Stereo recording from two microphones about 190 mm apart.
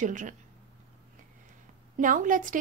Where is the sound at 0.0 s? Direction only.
40° right (ahead or behind).